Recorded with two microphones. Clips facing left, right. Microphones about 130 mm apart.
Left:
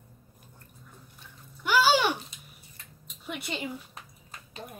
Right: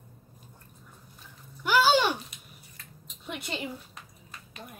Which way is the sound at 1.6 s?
Centre (ahead or behind).